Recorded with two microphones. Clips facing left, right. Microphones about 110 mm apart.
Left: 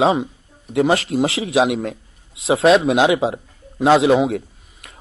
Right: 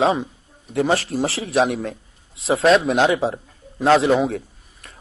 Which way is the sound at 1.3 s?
90° left.